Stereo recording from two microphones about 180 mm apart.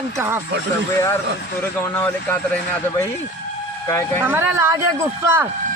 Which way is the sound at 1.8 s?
10° left (ahead or behind).